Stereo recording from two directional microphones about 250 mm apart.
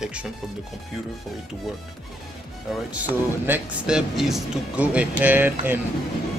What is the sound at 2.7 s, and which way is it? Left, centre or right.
Speech, centre.